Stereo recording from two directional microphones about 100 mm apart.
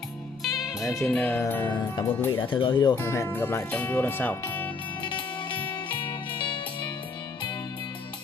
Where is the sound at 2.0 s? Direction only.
20° left (ahead or behind).